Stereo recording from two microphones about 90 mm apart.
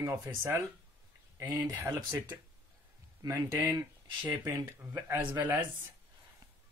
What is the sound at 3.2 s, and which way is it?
Speech, 45° right (ahead or behind).